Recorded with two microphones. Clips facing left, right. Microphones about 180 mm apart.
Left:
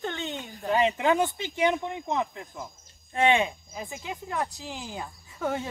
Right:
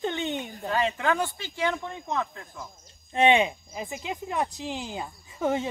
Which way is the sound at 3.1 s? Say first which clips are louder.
Right 2 dB; 20° right (ahead or behind).